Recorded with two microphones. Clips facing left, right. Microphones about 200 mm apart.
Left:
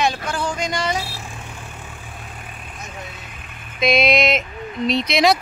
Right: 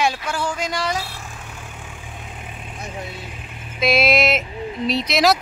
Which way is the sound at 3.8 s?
5° right (ahead or behind).